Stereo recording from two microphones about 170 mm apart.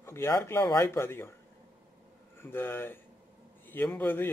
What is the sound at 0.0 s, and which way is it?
A man's voice, 15° left (ahead or behind).